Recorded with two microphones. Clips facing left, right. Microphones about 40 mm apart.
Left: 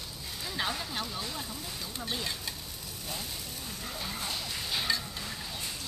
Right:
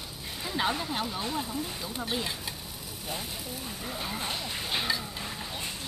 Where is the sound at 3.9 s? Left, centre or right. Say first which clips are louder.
Right 3 dB; right.